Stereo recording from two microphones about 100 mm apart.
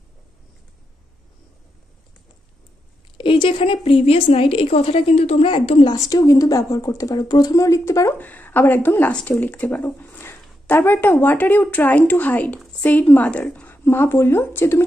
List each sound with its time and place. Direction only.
3.2 s a woman's voice: 55° left (ahead or behind)
5.9 s a woman's voice: 35° left (ahead or behind)
8.2 s a woman's voice: 20° left (ahead or behind)